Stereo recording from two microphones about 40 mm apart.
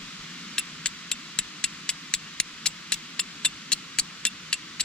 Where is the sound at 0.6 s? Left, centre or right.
Left.